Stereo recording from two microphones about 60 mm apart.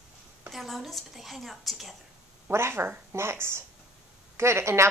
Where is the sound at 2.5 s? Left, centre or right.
Right.